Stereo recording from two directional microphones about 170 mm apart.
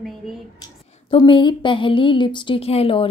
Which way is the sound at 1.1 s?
30° left (ahead or behind).